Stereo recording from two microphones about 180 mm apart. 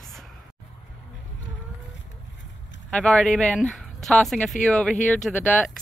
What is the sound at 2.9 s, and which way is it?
Speech, 5° left (ahead or behind).